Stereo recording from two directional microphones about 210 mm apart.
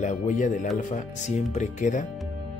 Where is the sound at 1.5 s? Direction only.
35° left (ahead or behind).